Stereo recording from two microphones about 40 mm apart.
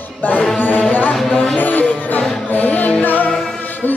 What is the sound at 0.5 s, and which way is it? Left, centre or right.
Music, left.